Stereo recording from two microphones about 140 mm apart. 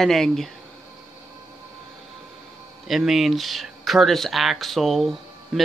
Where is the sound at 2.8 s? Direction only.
Centre (ahead or behind).